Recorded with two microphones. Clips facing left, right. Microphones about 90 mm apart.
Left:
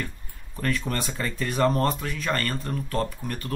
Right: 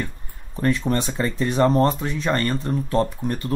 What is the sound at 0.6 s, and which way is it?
Speech, 25° right (ahead or behind).